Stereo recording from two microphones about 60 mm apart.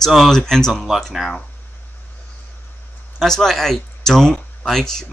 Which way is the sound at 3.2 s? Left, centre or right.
Centre.